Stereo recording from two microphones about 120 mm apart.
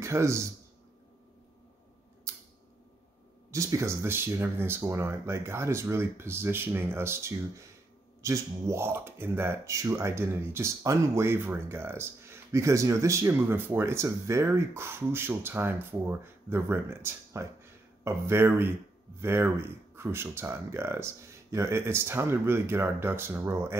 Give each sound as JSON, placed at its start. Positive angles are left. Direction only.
{"t": 0.0, "sound": "a man's voice", "side_deg": -25}
{"t": 2.3, "sound": "a sound", "side_deg": -25}
{"t": 3.5, "sound": "speech", "side_deg": -25}